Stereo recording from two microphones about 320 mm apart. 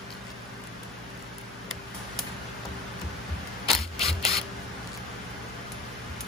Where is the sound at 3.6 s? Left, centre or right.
Centre.